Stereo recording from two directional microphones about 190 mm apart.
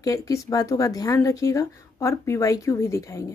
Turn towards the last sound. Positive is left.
turn(degrees=15)  # may be behind; listen again after turning